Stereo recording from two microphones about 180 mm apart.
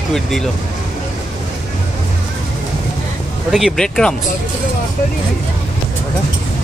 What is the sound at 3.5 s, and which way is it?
Speech, centre (ahead or behind).